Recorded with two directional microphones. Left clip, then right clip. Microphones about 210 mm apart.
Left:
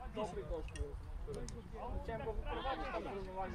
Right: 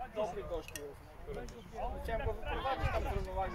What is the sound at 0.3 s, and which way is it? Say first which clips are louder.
Speech: right 4 dB; 50° right (ahead or behind).